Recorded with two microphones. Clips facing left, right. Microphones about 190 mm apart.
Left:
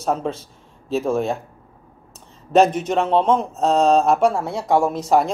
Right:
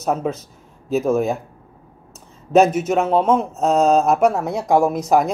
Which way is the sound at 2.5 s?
5° right (ahead or behind).